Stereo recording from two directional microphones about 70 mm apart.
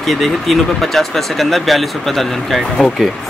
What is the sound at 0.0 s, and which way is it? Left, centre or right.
Speech, centre.